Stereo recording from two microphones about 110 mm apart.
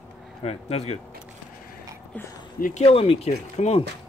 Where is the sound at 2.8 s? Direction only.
65° left (ahead or behind).